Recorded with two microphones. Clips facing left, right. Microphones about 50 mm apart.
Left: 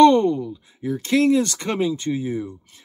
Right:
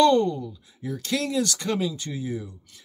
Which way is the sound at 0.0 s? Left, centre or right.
Left.